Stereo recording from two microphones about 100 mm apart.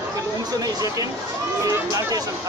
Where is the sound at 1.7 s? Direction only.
35° right (ahead or behind).